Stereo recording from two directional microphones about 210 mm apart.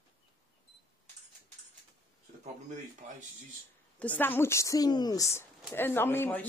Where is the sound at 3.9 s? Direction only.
10° left (ahead or behind).